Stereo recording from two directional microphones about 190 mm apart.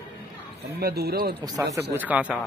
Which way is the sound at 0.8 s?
55° right (ahead or behind).